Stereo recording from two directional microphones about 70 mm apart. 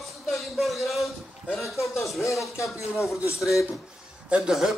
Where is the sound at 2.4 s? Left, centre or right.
Left.